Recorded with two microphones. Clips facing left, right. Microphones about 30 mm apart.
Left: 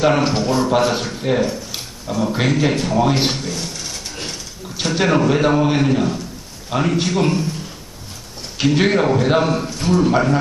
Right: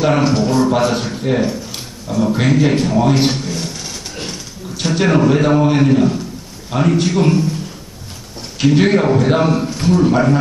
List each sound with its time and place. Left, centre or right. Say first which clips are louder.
0.0 s a man's voice: right 2 dB; centre
8.5 s a man's voice: right 3 dB; centre